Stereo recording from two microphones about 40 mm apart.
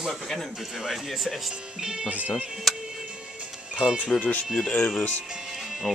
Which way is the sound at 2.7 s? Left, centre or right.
Centre.